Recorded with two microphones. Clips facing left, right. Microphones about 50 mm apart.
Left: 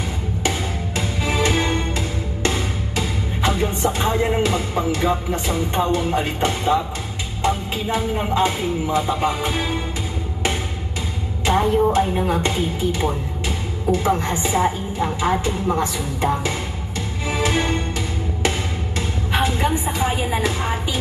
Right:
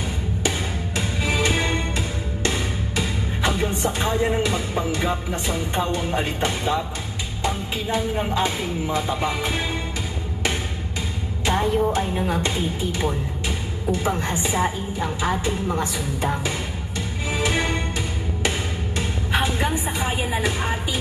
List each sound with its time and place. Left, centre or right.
0.4 s music: left
5.5 s a woman's voice: left
11.4 s a woman's voice: left
17.3 s music: left
20.0 s a woman's voice: left